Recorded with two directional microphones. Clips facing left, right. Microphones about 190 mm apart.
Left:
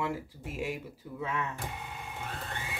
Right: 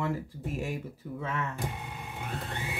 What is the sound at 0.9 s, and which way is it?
Speech, 15° left (ahead or behind).